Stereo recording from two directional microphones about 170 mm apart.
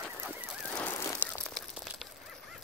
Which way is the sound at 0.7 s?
15° left (ahead or behind).